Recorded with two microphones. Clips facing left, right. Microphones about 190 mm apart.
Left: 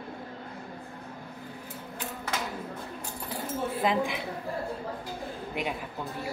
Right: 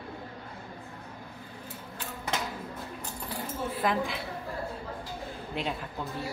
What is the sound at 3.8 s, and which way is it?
Speech, 15° left (ahead or behind).